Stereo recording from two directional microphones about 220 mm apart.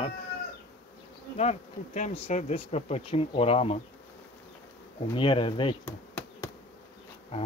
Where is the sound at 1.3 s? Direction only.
30° left (ahead or behind).